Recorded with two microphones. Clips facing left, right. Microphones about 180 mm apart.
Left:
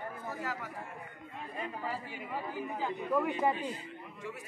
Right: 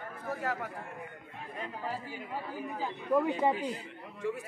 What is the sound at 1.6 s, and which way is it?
Speech, 10° left (ahead or behind).